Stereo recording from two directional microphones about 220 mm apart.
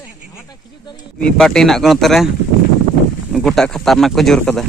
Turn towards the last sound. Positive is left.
turn(degrees=5)  # may be behind; listen again after turning